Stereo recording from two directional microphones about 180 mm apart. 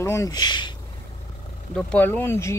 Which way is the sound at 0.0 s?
15° left (ahead or behind).